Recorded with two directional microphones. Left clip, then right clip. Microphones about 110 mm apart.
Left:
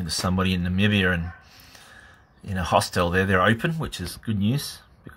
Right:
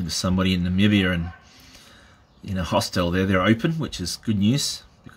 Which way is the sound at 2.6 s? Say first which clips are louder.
Left 2 dB; 5° left (ahead or behind).